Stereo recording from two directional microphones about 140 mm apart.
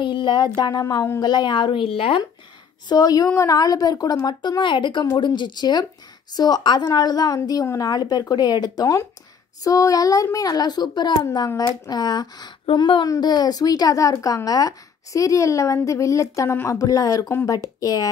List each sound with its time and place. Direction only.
0.0 s a sound: 35° left (ahead or behind)
0.6 s a woman's voice: 30° left (ahead or behind)
2.9 s a woman's voice: 25° left (ahead or behind)